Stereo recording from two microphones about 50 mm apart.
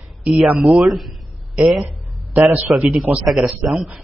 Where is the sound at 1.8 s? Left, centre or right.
Right.